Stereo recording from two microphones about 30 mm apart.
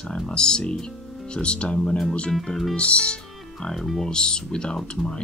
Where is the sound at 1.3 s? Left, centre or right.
Left.